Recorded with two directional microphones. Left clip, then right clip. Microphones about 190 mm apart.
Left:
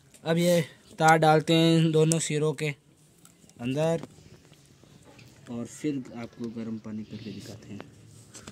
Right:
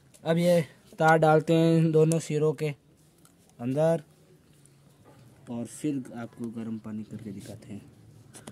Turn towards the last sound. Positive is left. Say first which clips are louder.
# left 1 dB
turn(degrees=-15)  # may be behind; listen again after turning